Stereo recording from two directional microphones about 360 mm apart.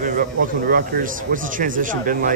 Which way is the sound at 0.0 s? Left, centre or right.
Right.